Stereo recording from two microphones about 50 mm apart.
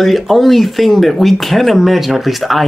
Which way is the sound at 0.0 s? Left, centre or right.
Centre.